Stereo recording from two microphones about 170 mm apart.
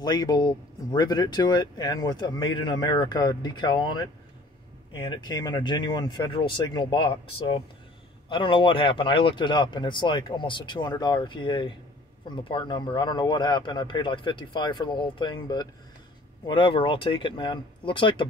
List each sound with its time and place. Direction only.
0.0 s speech: 25° left (ahead or behind)